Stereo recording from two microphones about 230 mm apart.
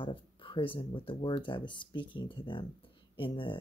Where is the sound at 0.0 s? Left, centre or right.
Left.